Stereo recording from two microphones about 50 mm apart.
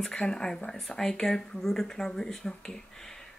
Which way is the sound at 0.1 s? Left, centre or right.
Centre.